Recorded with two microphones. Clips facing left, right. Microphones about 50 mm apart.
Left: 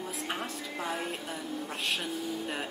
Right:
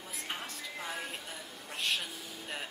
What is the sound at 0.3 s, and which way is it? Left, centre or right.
Music, centre.